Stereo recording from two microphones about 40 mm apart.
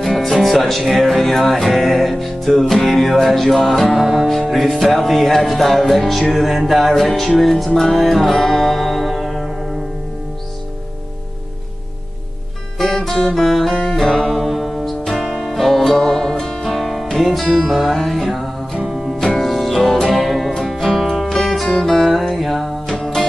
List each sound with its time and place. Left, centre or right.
0.0 s music: centre
3.9 s music: centre
4.3 s music: centre
12.7 s music: centre